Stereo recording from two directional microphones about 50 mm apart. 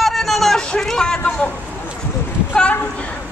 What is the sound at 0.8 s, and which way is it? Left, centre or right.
Vehicle, centre.